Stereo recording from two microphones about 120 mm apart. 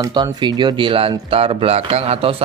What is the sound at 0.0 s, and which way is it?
Speech, 40° right (ahead or behind).